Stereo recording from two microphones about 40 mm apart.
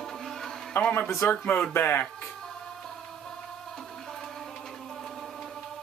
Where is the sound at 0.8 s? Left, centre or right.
Left.